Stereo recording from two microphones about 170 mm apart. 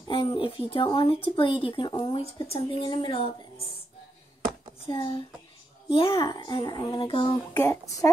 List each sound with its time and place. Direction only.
0.1 s speech: 30° left (ahead or behind)
4.8 s speech: 30° left (ahead or behind)
7.5 s speech: 15° left (ahead or behind)